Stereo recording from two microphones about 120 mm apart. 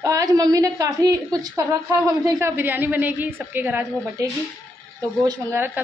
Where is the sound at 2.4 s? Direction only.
15° right (ahead or behind).